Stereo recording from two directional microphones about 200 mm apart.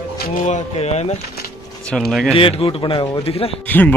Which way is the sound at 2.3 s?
30° left (ahead or behind).